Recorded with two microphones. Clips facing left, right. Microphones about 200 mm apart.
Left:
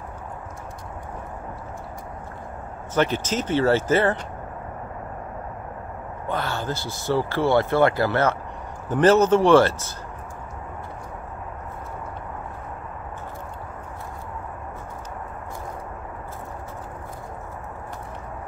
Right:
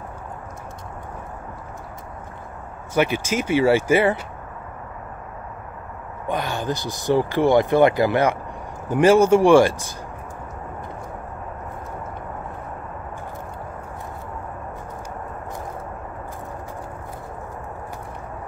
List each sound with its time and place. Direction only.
2.9 s speech: 10° right (ahead or behind)
6.2 s speech: 15° right (ahead or behind)